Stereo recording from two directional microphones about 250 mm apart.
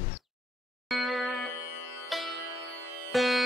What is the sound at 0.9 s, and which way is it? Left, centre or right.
Music, centre.